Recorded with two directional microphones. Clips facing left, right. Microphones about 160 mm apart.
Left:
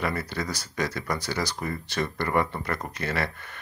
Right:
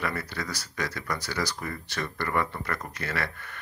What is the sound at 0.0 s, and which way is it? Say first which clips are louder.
Speech: left 3 dB; 25° left (ahead or behind).